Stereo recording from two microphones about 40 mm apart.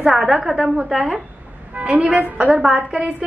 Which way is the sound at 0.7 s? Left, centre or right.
Centre.